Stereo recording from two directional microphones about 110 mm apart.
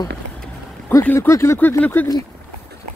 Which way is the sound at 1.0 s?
20° left (ahead or behind).